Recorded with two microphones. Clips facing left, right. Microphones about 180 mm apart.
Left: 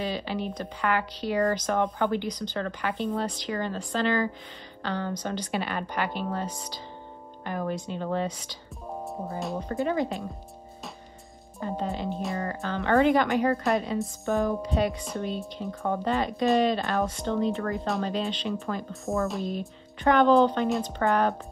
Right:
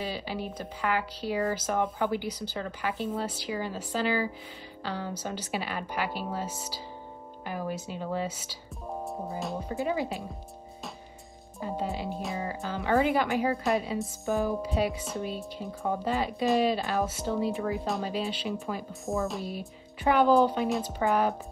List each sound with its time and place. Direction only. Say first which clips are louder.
0.0 s speech: left 4 dB; 5° right (ahead or behind)
11.6 s speech: left 2 dB; 5° right (ahead or behind)